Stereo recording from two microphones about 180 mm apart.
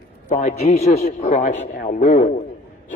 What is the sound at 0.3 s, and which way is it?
A man's voice, 40° left (ahead or behind).